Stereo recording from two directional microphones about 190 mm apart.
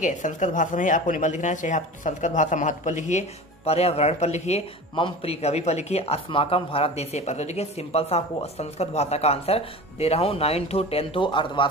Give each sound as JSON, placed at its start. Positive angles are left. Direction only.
{"t": 0.0, "sound": "speech", "side_deg": 40}